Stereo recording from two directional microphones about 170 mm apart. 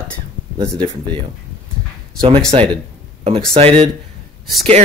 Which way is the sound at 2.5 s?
35° right (ahead or behind).